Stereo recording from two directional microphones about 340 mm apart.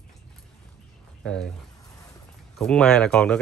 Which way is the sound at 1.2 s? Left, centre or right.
Centre.